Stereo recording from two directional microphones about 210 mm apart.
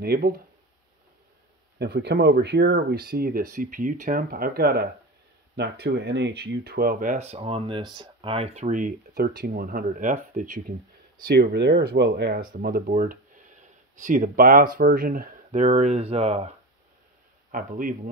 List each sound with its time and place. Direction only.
0.0 s speech: 45° right (ahead or behind)
1.8 s speech: 50° right (ahead or behind)
11.2 s speech: 50° right (ahead or behind); by 16.4 s 30° right (ahead or behind)
17.5 s speech: 40° right (ahead or behind)